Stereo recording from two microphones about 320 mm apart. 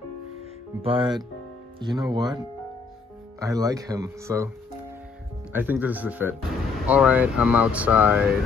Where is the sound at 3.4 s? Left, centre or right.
Centre.